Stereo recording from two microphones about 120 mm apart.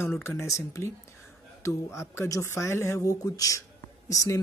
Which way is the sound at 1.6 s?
25° left (ahead or behind).